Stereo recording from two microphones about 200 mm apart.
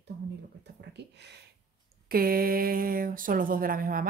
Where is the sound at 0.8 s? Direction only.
55° right (ahead or behind).